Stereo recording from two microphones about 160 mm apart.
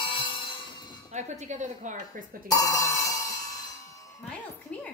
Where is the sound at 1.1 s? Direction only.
45° right (ahead or behind).